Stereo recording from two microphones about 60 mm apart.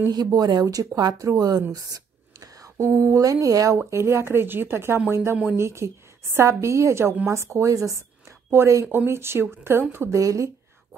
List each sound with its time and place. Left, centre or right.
0.1 s speech: right
2.4 s a sound: right
2.8 s speech: right
3.9 s a woman's voice: right
8.6 s a woman's voice: right
10.1 s speech: right